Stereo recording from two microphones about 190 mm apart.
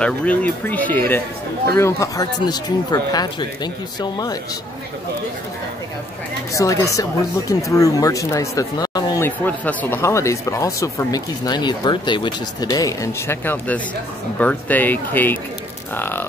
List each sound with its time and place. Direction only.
0.0 s speech: 5° left (ahead or behind)
6.5 s speech: 15° left (ahead or behind)